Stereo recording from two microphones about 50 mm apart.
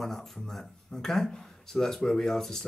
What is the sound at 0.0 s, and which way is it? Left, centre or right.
Speech, centre.